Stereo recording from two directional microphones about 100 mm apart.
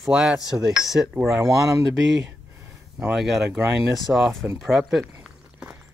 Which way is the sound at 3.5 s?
20° right (ahead or behind).